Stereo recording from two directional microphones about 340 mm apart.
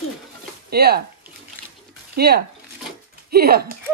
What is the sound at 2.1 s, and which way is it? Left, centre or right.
Speech, right.